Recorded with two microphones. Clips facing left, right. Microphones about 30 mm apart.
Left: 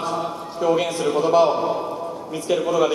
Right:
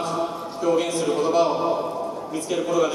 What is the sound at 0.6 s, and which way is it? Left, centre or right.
Speech, centre.